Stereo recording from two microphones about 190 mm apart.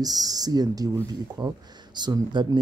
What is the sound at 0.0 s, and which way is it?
Speech, 20° right (ahead or behind).